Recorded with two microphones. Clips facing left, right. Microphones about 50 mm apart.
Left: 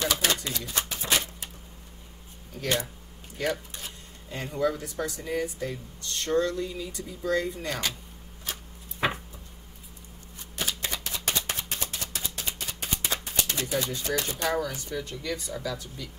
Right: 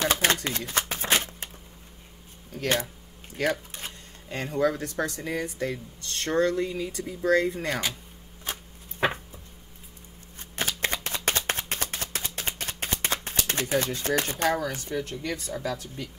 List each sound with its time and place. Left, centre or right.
0.0 s shuffling cards: right
2.5 s speech: right
4.3 s speech: right
10.5 s a sound: right
13.5 s speech: right